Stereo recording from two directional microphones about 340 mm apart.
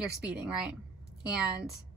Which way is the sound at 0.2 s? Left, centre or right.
Centre.